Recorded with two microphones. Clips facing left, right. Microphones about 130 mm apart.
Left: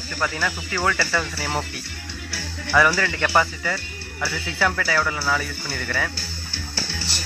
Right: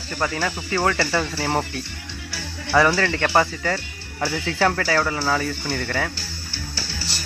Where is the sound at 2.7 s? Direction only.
25° right (ahead or behind).